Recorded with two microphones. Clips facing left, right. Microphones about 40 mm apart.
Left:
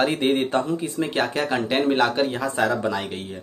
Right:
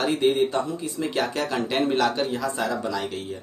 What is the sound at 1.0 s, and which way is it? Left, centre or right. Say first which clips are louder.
Speech: left 1 dB; left.